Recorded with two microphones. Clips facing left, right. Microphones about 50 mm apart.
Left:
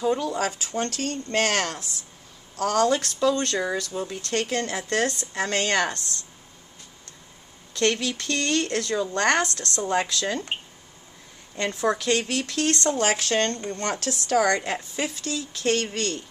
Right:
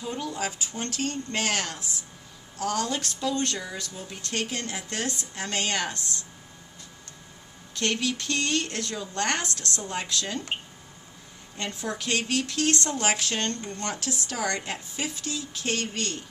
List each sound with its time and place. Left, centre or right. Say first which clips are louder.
0.3 s a woman's voice: left 5 dB; left
3.9 s a woman's voice: left 6 dB; left
7.7 s a woman's voice: left 4 dB; left
11.8 s a woman's voice: left 6 dB; left